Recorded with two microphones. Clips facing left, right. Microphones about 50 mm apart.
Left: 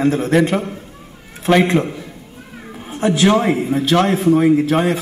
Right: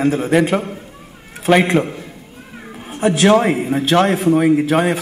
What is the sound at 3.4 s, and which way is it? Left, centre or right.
Speech, centre.